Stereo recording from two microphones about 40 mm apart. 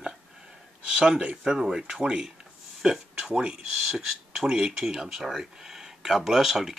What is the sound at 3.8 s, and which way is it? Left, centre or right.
Speech, centre.